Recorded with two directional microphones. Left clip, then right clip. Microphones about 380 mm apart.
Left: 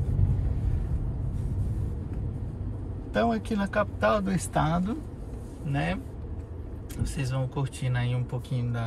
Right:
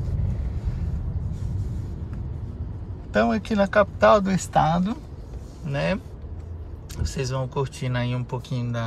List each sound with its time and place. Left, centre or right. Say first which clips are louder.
3.1 s speech: right 4 dB; centre
7.0 s speech: right 6 dB; centre